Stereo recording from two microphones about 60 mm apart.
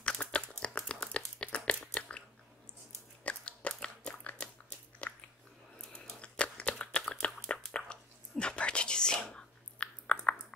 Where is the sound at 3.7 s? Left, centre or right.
Centre.